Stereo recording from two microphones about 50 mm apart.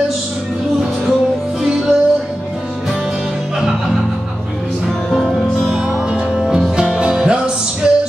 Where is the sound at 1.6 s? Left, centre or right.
Centre.